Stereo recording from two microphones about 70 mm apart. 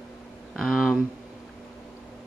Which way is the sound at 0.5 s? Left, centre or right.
Centre.